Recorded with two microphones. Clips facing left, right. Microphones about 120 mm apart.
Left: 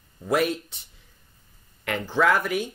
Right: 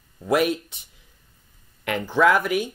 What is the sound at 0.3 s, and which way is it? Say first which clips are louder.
Speech: right 2 dB; 10° right (ahead or behind).